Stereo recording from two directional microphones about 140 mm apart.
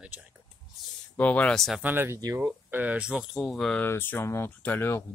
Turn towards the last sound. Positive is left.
turn(degrees=15)  # may be behind; listen again after turning